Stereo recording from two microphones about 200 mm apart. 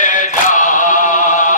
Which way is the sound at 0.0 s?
40° left (ahead or behind).